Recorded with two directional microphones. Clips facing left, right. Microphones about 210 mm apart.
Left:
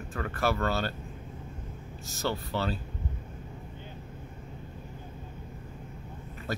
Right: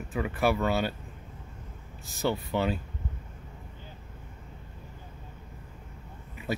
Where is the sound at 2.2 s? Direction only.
15° right (ahead or behind).